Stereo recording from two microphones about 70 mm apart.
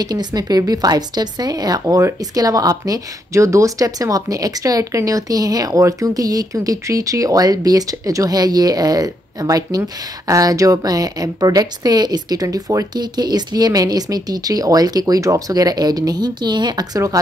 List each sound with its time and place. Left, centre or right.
0.0 s speech: right
2.0 s speech: right